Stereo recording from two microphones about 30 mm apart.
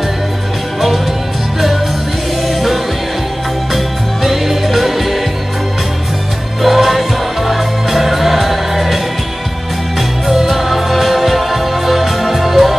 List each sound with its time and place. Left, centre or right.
0.7 s music: centre
2.4 s music: centre
6.6 s music: centre
10.2 s music: centre